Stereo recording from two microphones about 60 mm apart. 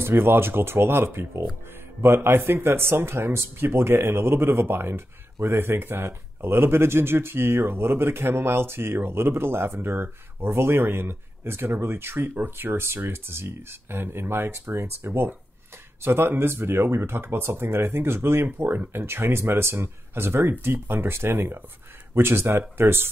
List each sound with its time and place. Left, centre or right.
0.0 s speech: right